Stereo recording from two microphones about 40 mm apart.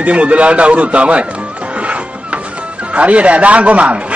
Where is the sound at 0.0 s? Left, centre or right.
Right.